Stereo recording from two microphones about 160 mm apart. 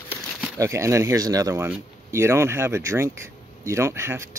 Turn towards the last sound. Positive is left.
turn(degrees=-15)  # may be behind; listen again after turning